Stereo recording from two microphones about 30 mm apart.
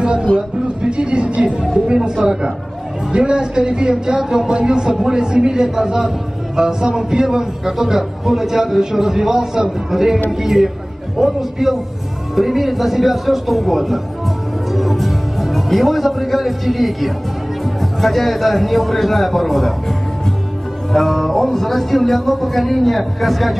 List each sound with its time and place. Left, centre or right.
0.0 s a sound: right
0.8 s a woman's voice: right
3.1 s a sound: right
4.9 s a man's voice: centre
12.4 s speech: centre
20.9 s speech: centre